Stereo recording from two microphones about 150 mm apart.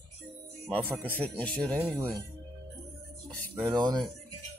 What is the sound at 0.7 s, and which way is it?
Speech, 10° right (ahead or behind).